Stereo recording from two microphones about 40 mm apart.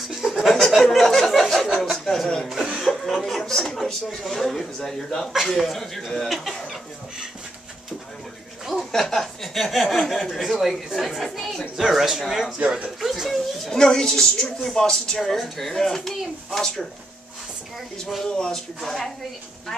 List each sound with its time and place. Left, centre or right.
0.1 s a sound: centre
1.8 s speech: centre
8.6 s speech: centre
11.7 s a man's voice: centre
12.5 s speech: right
13.0 s speech: centre
13.7 s speech: centre
18.2 s speech: centre